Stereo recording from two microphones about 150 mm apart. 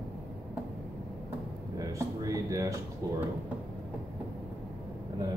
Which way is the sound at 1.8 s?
20° right (ahead or behind).